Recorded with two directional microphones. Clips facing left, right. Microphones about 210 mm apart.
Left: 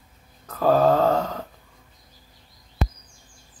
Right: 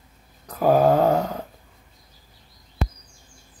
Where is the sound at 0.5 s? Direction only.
15° right (ahead or behind).